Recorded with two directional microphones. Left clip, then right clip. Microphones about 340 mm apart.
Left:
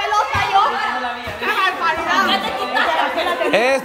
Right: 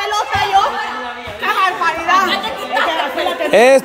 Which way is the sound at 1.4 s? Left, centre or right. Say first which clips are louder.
Right 3 dB; centre.